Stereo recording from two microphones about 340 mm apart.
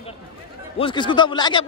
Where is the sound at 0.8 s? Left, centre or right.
Centre.